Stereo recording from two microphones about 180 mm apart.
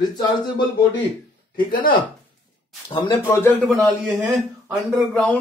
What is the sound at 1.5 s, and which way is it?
Speech, 50° left (ahead or behind).